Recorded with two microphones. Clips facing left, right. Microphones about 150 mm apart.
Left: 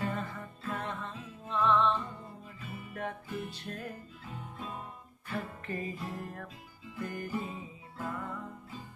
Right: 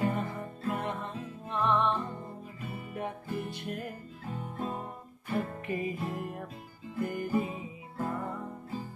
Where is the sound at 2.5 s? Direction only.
50° right (ahead or behind).